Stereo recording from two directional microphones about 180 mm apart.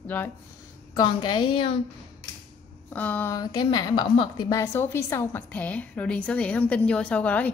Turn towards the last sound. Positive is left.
turn(degrees=10)  # may be behind; listen again after turning